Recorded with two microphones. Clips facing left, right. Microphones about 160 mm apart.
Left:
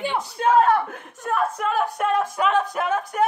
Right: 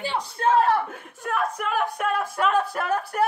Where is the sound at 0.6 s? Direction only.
50° left (ahead or behind).